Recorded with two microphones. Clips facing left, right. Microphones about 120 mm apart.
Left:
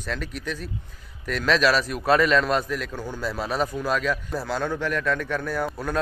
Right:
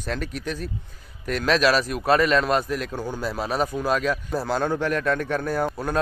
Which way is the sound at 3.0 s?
20° right (ahead or behind).